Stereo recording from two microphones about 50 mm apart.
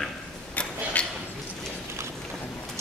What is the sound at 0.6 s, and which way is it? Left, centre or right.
Tick-tock, left.